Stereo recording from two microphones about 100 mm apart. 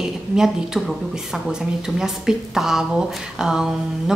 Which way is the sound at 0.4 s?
Centre (ahead or behind).